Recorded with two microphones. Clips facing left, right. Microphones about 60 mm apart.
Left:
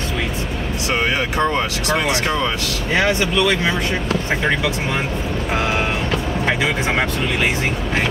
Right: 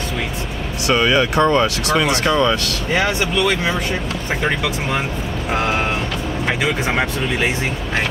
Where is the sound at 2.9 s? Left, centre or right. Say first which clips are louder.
Left 1 dB; centre.